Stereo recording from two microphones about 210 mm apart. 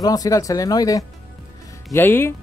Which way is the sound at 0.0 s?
15° left (ahead or behind).